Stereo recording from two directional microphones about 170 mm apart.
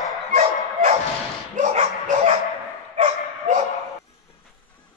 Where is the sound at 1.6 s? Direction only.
45° right (ahead or behind).